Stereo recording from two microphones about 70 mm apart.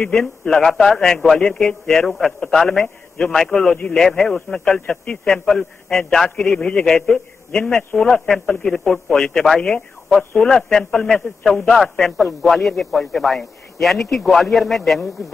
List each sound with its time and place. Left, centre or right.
0.1 s a man's voice: centre
1.4 s a man's voice: centre
10.0 s a man's voice: centre